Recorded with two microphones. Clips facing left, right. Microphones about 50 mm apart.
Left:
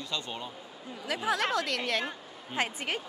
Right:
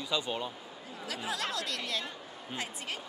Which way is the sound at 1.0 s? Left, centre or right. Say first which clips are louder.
Left 6 dB; left.